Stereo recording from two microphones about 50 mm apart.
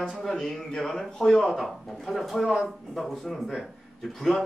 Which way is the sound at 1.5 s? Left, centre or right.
Centre.